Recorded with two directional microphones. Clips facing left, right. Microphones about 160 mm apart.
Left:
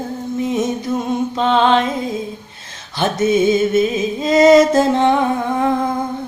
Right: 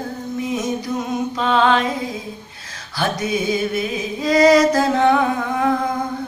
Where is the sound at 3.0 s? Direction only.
25° left (ahead or behind).